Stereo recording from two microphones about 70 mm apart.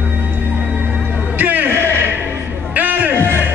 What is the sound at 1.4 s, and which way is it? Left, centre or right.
Music, right.